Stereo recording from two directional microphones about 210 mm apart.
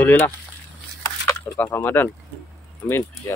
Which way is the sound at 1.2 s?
10° left (ahead or behind).